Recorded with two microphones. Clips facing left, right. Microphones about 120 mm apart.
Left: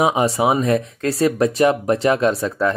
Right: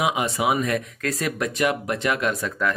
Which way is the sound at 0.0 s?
35° left (ahead or behind).